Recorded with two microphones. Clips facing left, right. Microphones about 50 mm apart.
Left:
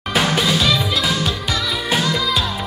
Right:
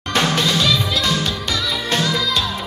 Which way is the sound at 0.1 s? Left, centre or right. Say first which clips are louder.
Even; centre.